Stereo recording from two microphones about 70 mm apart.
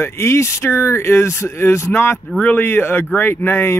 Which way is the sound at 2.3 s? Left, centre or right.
Left.